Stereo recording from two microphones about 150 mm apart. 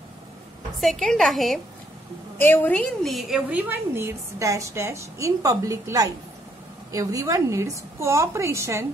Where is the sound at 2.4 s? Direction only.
10° left (ahead or behind).